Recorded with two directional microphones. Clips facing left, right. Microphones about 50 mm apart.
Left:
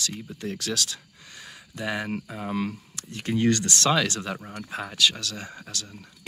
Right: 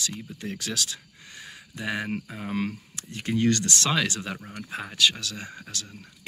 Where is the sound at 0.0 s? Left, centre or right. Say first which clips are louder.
Left 1 dB; centre.